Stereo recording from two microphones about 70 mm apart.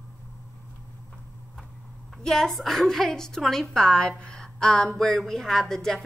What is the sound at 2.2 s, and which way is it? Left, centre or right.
A woman's voice, centre.